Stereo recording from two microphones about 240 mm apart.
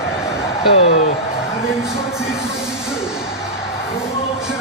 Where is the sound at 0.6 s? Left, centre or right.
Left.